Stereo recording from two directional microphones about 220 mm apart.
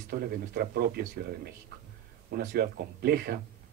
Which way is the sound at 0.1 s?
40° right (ahead or behind).